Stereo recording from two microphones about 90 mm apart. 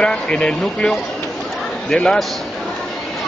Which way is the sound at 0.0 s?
10° left (ahead or behind).